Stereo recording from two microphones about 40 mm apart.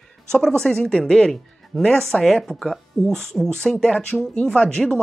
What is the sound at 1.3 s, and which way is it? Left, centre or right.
Speech, centre.